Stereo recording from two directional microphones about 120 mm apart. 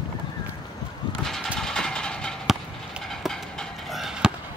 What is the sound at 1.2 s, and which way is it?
Mechanisms, 5° left (ahead or behind).